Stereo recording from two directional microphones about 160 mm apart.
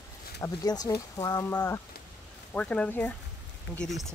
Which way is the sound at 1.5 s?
10° left (ahead or behind).